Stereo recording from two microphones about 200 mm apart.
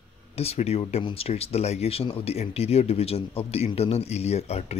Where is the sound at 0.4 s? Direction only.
30° left (ahead or behind).